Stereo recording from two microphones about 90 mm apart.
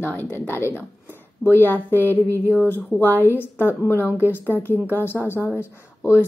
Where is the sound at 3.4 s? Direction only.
25° left (ahead or behind).